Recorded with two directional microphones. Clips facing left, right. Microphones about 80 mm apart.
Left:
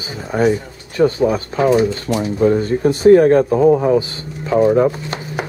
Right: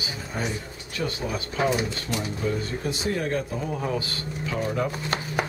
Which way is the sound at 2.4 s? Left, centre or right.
Left.